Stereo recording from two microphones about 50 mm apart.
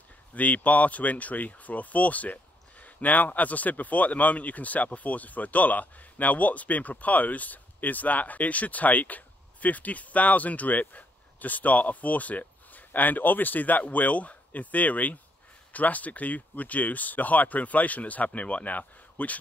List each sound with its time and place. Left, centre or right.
0.3 s speech: left